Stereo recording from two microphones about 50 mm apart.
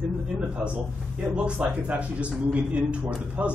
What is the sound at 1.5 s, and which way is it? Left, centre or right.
Speech, right.